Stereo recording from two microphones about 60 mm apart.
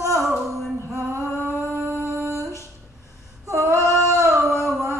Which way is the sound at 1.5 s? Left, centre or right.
Right.